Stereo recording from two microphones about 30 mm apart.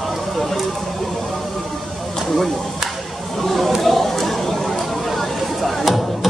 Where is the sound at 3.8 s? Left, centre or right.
Centre.